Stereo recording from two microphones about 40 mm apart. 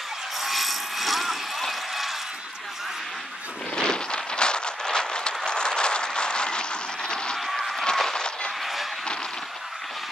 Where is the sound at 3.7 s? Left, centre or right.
Left.